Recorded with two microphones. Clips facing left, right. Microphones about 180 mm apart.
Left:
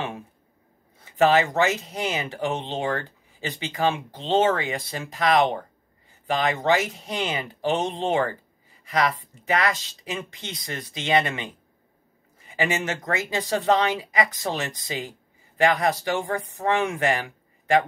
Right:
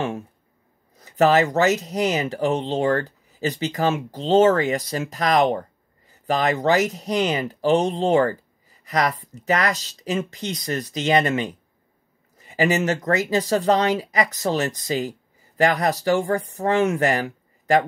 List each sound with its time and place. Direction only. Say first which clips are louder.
0.9 s speech: right 2 dB; 40° right (ahead or behind)